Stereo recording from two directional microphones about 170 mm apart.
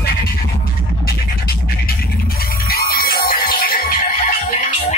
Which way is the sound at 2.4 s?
65° left (ahead or behind).